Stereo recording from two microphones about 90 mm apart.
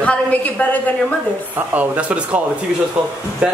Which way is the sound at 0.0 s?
15° left (ahead or behind).